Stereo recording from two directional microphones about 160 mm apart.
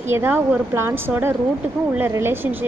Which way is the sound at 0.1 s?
10° right (ahead or behind).